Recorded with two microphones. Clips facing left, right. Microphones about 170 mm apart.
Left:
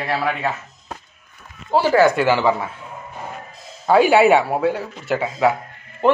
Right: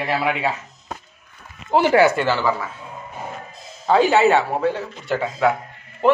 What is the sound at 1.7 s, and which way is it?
Speech, 20° right (ahead or behind).